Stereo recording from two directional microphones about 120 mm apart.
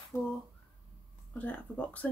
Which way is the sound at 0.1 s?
20° left (ahead or behind).